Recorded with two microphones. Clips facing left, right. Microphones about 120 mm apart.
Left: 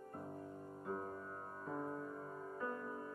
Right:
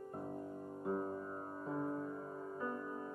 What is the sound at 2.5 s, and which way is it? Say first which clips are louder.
Music: right 1 dB; 15° right (ahead or behind).